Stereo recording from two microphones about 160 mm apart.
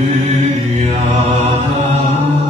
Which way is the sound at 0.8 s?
40° right (ahead or behind).